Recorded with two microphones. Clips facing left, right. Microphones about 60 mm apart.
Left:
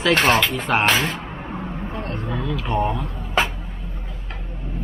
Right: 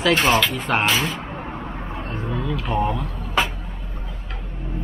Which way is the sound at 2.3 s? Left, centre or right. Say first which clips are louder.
Even; centre.